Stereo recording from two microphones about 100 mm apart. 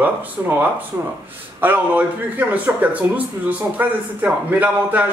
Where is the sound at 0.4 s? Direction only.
25° right (ahead or behind).